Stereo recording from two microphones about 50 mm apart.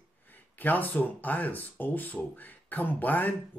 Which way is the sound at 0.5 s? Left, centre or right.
Left.